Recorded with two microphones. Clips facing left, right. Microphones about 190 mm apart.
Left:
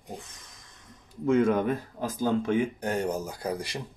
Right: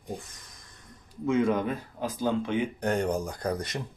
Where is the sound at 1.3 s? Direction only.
45° left (ahead or behind).